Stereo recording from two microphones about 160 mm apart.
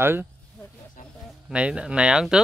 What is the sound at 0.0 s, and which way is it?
Speech, 15° right (ahead or behind).